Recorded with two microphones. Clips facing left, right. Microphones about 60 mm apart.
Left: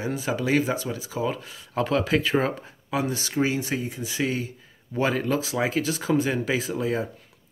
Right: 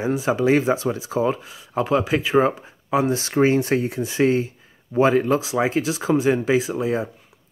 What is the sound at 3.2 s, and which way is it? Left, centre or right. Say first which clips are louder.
Speech: right 7 dB; right.